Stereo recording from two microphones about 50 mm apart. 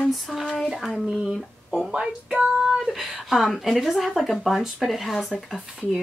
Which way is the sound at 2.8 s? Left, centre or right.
Centre.